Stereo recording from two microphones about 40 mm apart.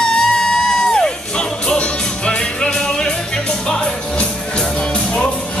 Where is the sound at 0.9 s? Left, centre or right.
Left.